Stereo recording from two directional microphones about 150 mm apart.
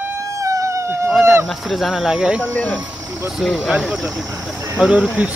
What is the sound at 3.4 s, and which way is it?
Speech, centre (ahead or behind).